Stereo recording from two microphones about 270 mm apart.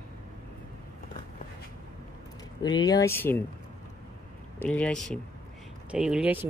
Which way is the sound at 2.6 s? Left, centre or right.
Centre.